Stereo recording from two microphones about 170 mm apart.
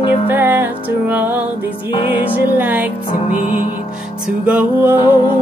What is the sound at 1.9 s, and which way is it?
Music, 30° left (ahead or behind).